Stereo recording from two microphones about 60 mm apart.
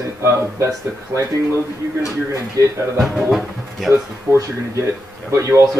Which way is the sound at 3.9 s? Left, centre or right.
Right.